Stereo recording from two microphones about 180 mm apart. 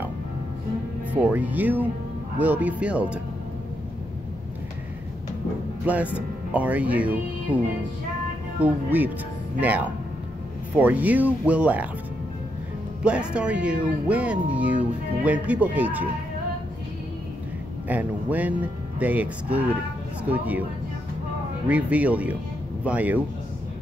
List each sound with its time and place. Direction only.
1.1 s speech: 10° right (ahead or behind)
5.9 s speech: 5° right (ahead or behind)
13.0 s speech: 5° right (ahead or behind)
17.8 s speech: 10° right (ahead or behind)
21.6 s speech: 5° right (ahead or behind)